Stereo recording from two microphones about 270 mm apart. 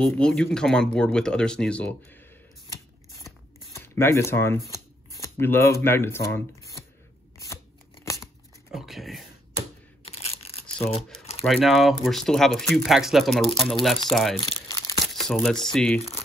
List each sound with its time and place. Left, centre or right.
0.0 s speech: centre
3.7 s speech: centre
8.0 s scissors: centre
8.7 s speech: centre
10.0 s a sound: left
10.8 s speech: left
11.4 s speech: centre